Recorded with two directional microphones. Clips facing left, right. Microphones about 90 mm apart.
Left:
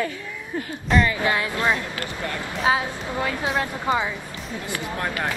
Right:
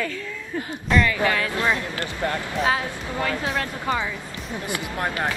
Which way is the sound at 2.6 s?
15° left (ahead or behind).